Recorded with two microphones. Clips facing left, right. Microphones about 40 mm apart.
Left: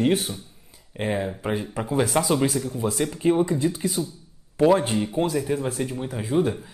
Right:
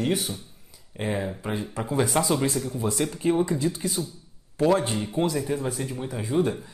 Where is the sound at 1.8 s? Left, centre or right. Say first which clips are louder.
Left 1 dB; centre.